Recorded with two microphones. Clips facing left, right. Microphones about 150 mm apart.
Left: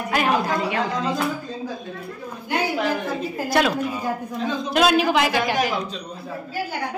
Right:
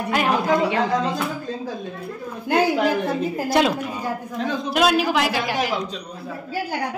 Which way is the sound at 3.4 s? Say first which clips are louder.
Right 1 dB; 25° right (ahead or behind).